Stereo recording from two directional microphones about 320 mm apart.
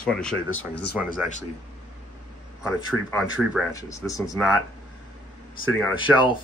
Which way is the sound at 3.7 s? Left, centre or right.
Centre.